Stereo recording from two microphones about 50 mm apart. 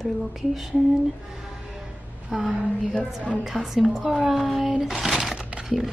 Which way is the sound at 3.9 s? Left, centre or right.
Centre.